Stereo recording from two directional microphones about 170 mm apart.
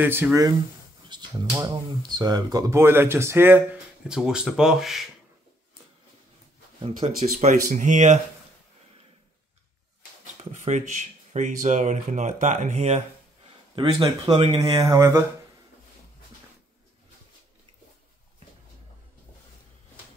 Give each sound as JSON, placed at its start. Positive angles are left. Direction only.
{"t": 0.0, "sound": "speech", "side_deg": -15}
{"t": 6.8, "sound": "speech", "side_deg": -35}
{"t": 10.6, "sound": "speech", "side_deg": -45}
{"t": 13.7, "sound": "speech", "side_deg": -25}